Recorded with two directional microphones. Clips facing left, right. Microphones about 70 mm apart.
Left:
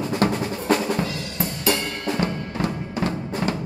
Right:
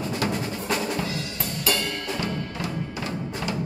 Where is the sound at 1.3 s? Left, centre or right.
Left.